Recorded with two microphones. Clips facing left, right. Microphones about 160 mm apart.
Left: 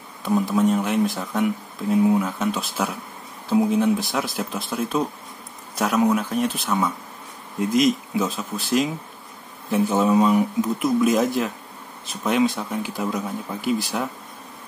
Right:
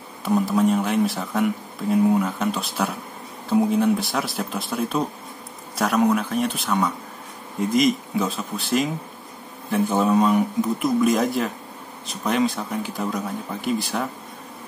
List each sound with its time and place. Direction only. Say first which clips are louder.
0.2 s speech: even; centre (ahead or behind)